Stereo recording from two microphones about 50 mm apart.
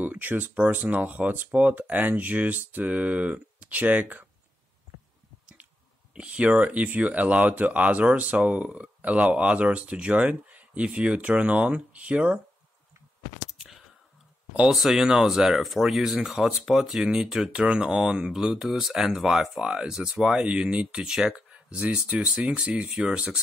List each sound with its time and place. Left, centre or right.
0.0 s speech: right
6.1 s speech: right
13.5 s a sound: centre
14.7 s speech: centre
19.6 s speech: right
19.9 s speech: centre
21.5 s speech: right